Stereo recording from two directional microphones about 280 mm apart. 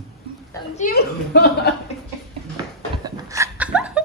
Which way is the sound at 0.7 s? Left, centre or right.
Left.